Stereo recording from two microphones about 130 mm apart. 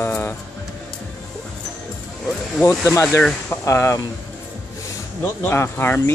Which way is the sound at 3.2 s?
10° left (ahead or behind).